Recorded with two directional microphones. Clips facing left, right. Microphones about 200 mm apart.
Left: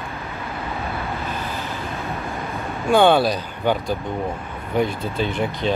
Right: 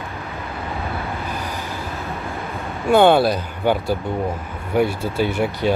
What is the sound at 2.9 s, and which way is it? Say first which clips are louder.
Speech: right 2 dB; 10° right (ahead or behind).